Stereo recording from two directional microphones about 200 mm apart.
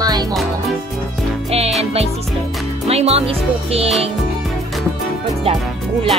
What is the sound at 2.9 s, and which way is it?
Speech, 30° right (ahead or behind).